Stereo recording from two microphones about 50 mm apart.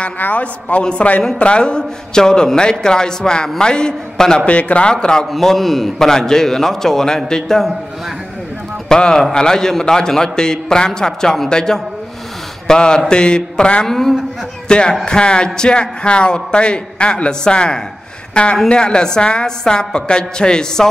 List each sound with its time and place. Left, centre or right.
0.2 s a man's voice: left; by 4.4 s centre
4.5 s a man's voice: left
4.9 s a man's voice: centre
8.8 s a man's voice: centre
13.8 s a man's voice: centre
14.7 s a man's voice: centre